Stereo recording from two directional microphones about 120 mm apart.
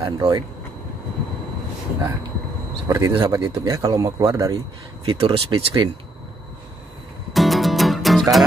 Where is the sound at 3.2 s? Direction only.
40° right (ahead or behind).